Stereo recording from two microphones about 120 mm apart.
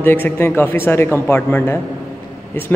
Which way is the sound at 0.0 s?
15° left (ahead or behind).